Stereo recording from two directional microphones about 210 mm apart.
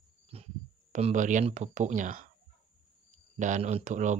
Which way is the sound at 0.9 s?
35° right (ahead or behind).